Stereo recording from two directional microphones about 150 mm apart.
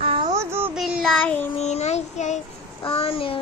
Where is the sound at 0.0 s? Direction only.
40° right (ahead or behind).